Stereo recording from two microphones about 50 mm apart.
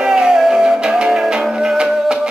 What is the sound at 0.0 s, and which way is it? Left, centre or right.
Music, centre.